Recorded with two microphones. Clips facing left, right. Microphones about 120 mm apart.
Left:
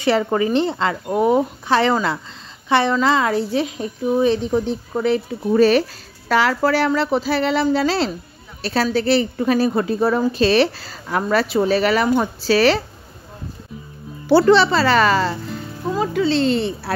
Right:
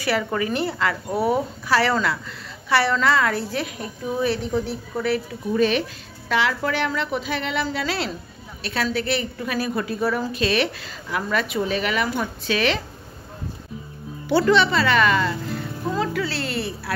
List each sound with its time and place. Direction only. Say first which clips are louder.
0.0 s a woman's voice: left 6 dB; 25° left (ahead or behind)
5.5 s a woman's voice: left 6 dB; 40° left (ahead or behind)
14.2 s a woman's voice: left 5 dB; 30° left (ahead or behind)
15.9 s a woman's voice: left 6 dB; 20° left (ahead or behind)